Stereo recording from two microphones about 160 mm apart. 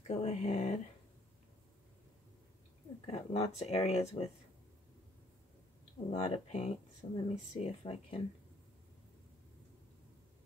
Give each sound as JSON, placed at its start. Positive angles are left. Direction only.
{"t": 0.0, "sound": "speech", "side_deg": 40}
{"t": 3.1, "sound": "speech", "side_deg": 40}
{"t": 6.1, "sound": "speech", "side_deg": 40}